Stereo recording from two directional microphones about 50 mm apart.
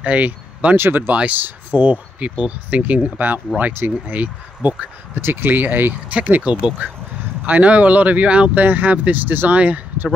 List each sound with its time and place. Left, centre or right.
0.0 s speech: right
0.7 s speech: right
1.1 s speech: right
5.1 s speech: right